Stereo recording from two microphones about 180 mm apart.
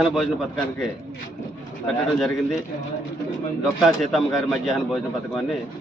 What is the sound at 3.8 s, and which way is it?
A man's voice, centre (ahead or behind).